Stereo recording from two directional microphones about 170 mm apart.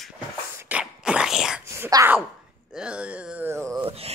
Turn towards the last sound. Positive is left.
turn(degrees=-35)  # may be behind; listen again after turning